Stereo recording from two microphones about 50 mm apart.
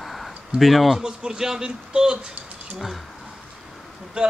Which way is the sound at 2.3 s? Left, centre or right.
Right.